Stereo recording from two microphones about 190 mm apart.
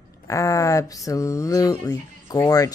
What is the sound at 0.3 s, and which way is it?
Speech, 15° left (ahead or behind).